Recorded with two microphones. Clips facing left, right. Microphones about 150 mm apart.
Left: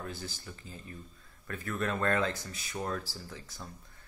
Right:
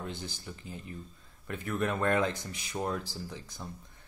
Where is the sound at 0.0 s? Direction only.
20° right (ahead or behind).